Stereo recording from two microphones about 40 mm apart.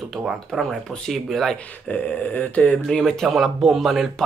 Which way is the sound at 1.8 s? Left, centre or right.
Left.